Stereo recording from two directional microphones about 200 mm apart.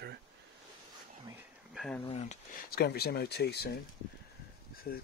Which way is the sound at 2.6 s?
50° left (ahead or behind).